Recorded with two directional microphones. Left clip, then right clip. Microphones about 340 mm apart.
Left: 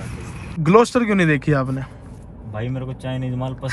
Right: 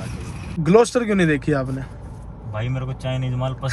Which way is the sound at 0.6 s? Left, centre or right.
Centre.